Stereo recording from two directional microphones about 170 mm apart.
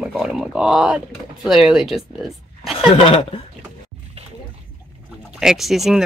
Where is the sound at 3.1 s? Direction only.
35° left (ahead or behind).